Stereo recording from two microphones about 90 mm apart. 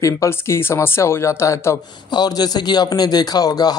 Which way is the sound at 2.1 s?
50° left (ahead or behind).